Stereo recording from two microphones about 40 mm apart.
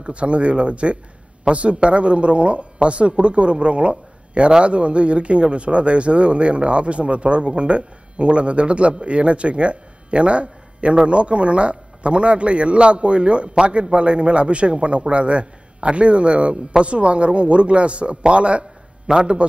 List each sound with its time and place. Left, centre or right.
0.0 s a man's voice: right